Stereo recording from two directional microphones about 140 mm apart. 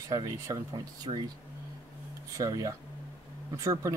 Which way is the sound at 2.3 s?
25° right (ahead or behind).